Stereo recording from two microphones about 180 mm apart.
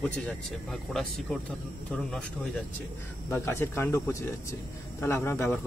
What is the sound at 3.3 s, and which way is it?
A man's voice, 10° left (ahead or behind).